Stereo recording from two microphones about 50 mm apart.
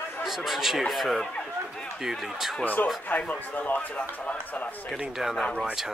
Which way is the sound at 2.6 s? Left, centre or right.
Left.